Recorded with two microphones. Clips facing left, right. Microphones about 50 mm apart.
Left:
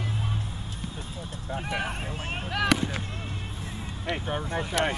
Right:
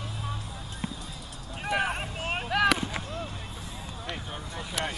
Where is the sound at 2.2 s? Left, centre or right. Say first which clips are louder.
Right 3 dB; right.